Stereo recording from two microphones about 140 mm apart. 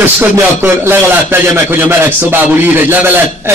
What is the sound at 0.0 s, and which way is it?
Speech, 15° right (ahead or behind).